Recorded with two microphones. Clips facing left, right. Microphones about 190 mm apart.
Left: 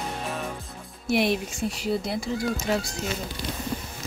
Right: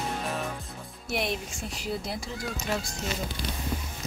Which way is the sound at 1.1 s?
5° left (ahead or behind).